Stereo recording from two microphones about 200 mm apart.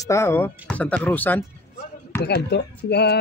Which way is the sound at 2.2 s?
55° left (ahead or behind).